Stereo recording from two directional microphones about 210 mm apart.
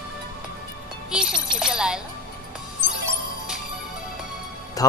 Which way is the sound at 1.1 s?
5° right (ahead or behind).